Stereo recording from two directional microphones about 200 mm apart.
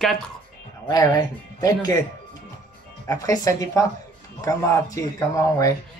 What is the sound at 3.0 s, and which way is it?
Speech, 15° left (ahead or behind).